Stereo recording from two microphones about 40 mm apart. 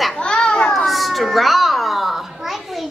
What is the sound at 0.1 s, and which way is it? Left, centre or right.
Children playing, left.